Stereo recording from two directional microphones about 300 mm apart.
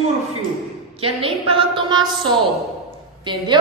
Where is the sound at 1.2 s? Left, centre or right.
Centre.